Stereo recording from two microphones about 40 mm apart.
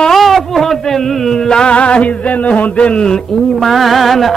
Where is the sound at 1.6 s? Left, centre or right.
Left.